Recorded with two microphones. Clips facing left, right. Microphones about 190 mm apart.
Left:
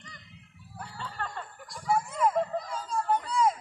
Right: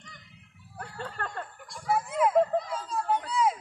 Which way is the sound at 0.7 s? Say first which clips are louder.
Right 1 dB; 55° right (ahead or behind).